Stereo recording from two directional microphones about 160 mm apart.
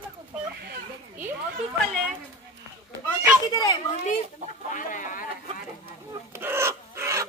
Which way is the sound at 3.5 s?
30° left (ahead or behind).